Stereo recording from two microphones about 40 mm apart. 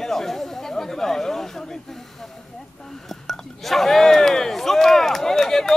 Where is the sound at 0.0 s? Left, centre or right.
Centre.